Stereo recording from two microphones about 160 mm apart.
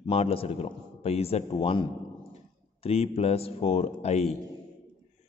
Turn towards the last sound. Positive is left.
turn(degrees=40)  # may be behind; listen again after turning